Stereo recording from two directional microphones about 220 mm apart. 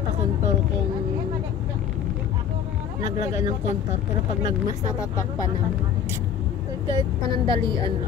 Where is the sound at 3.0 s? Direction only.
15° right (ahead or behind).